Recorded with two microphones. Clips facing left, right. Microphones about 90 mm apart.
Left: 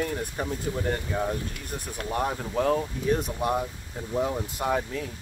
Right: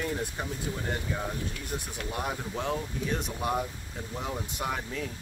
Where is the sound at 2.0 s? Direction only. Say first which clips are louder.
Left 7 dB; 40° left (ahead or behind).